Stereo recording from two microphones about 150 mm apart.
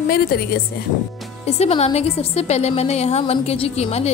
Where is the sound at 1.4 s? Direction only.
45° left (ahead or behind).